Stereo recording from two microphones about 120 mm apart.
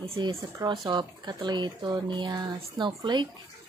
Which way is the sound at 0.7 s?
40° right (ahead or behind).